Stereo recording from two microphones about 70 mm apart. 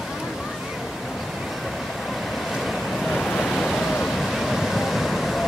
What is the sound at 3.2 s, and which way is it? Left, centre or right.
Waves, centre.